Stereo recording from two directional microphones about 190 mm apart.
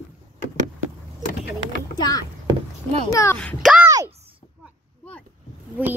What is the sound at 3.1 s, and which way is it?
Speech, 15° left (ahead or behind).